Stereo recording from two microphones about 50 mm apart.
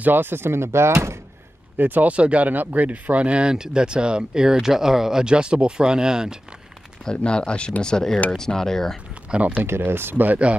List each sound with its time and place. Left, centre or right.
0.0 s speech: right
1.8 s speech: right
2.1 s speech: right
7.1 s speech: centre
9.1 s a sound: right
9.6 s speech: right